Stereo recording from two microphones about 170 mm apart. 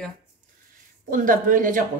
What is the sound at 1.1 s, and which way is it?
Speech, 50° right (ahead or behind).